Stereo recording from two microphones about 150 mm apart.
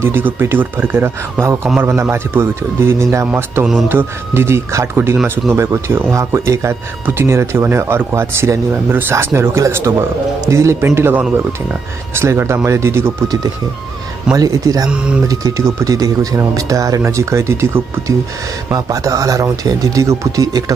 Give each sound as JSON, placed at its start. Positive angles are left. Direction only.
{"t": 0.0, "sound": "speech", "side_deg": -15}
{"t": 14.9, "sound": "speech", "side_deg": -5}
{"t": 15.2, "sound": "speech", "side_deg": -20}